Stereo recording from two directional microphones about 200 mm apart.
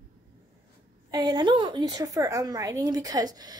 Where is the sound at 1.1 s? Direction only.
20° right (ahead or behind).